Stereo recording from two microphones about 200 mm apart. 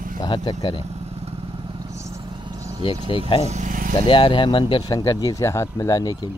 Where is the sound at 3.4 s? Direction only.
35° right (ahead or behind).